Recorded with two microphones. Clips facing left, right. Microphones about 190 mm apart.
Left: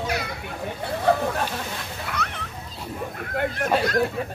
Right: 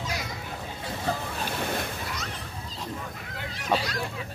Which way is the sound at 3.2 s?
55° left (ahead or behind).